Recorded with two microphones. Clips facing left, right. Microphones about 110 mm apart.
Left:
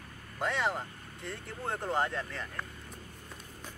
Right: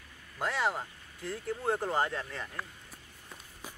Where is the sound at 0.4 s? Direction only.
Centre (ahead or behind).